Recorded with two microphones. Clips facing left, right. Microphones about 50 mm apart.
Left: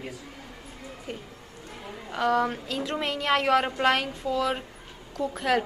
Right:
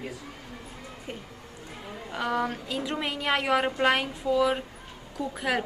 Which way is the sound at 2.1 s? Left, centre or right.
Centre.